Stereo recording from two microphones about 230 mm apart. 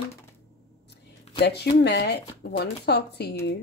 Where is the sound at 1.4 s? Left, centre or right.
Left.